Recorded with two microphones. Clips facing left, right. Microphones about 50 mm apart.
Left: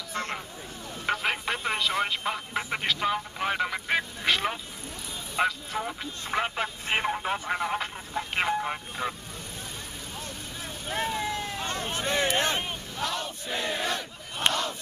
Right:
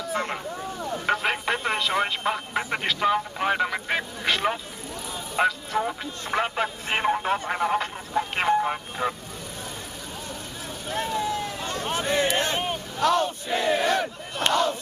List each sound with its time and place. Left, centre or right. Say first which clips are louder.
0.1 s speech: right 4 dB; centre
1.0 s a sound: right 3 dB; centre
1.8 s speech: right 3 dB; centre
10.9 s vehicle: right 3 dB; centre
11.8 s a sound: right 4 dB; right
12.4 s vehicle: right 2 dB; centre
13.0 s battle cry: right 10 dB; right
13.5 s battle cry: right 6 dB; right
14.5 s crowd: right 7 dB; right